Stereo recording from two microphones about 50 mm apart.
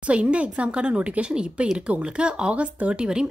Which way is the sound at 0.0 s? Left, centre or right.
Right.